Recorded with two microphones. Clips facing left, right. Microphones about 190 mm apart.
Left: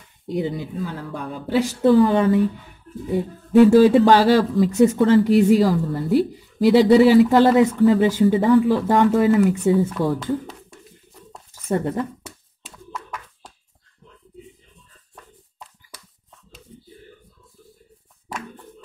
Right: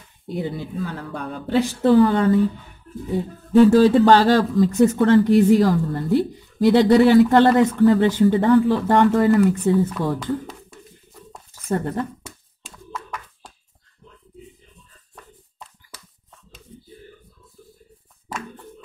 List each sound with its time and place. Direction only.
0.3 s speech: 15° left (ahead or behind)
3.2 s speech: 10° left (ahead or behind)
11.6 s speech: 10° left (ahead or behind)
12.6 s hands: 5° left (ahead or behind)